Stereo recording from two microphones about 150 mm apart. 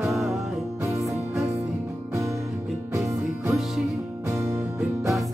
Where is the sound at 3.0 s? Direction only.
Centre (ahead or behind).